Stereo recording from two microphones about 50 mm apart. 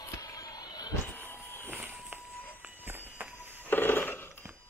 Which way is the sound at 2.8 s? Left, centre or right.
Right.